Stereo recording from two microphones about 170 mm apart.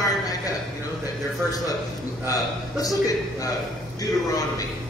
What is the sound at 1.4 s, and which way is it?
A man's voice, 20° left (ahead or behind).